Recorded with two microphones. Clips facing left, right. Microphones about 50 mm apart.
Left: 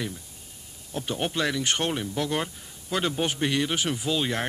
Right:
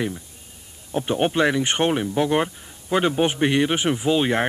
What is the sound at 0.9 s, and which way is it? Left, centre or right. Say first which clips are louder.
Speech: right 8 dB; right.